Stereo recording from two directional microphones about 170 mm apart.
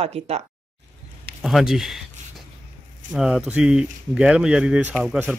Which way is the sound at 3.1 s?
5° right (ahead or behind).